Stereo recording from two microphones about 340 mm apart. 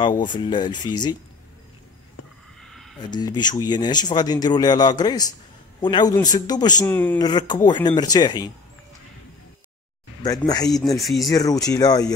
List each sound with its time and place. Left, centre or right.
0.0 s a man's voice: centre
2.6 s a sound: centre
3.0 s a man's voice: centre
10.2 s a man's voice: centre
10.8 s speech: centre
11.3 s a man's voice: centre